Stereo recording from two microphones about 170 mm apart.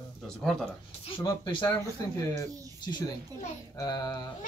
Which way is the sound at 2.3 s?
20° left (ahead or behind).